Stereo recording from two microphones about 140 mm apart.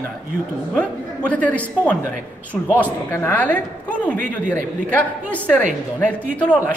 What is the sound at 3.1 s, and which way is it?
Speech, 15° left (ahead or behind).